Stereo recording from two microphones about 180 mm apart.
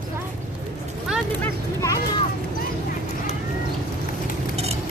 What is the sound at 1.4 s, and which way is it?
Speech, 15° left (ahead or behind).